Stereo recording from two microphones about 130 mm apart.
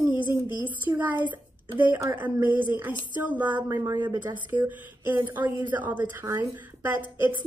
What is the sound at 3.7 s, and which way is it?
Speech, 25° right (ahead or behind).